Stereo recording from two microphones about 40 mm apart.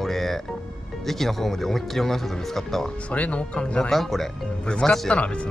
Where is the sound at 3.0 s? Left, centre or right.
Left.